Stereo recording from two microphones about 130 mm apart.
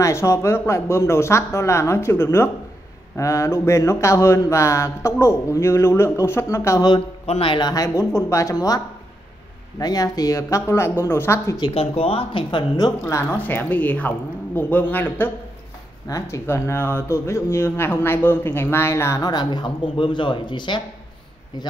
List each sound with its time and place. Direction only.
0.0 s speech: 20° left (ahead or behind)
7.2 s speech: 45° left (ahead or behind); by 11.5 s 20° left (ahead or behind)
11.6 s speech: 50° left (ahead or behind); by 12.9 s 35° left (ahead or behind)
13.0 s a woman's voice: 15° left (ahead or behind); by 20.8 s 35° left (ahead or behind)